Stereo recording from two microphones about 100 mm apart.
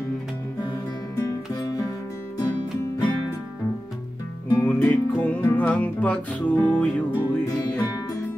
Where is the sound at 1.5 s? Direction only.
40° left (ahead or behind).